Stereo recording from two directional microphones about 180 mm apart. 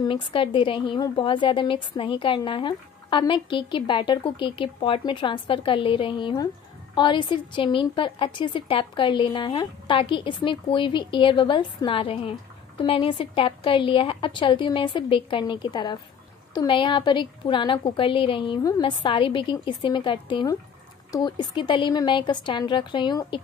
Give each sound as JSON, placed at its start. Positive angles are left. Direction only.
{"t": 0.0, "sound": "a woman's voice", "side_deg": 30}